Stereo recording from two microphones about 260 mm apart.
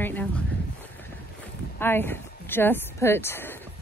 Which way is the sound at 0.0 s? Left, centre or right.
Centre.